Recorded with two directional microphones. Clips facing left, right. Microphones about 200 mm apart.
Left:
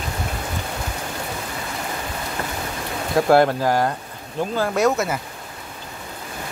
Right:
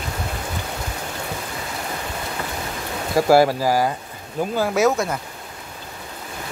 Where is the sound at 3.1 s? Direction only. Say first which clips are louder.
Right 1 dB; 5° right (ahead or behind).